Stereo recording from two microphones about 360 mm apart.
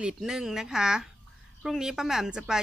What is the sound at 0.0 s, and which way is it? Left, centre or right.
Speech, centre.